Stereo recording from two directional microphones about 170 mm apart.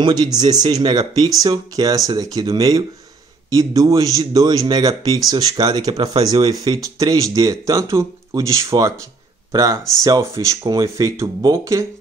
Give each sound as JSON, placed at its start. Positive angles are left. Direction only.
{"t": 0.0, "sound": "speech", "side_deg": -25}